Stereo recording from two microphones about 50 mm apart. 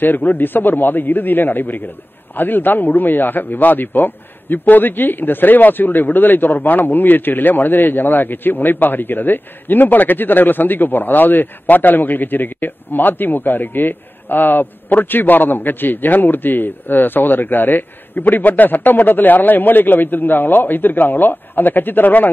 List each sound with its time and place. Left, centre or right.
0.0 s a man's voice: left